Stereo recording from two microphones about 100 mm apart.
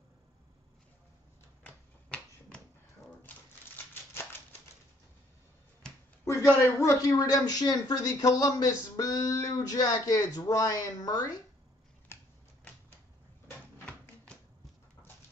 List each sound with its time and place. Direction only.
1.6 s typewriter: 10° left (ahead or behind)
3.3 s typewriter: 20° left (ahead or behind)
6.6 s speech: 35° left (ahead or behind)
12.1 s finger snapping: 25° left (ahead or behind)
13.8 s typewriter: 10° left (ahead or behind)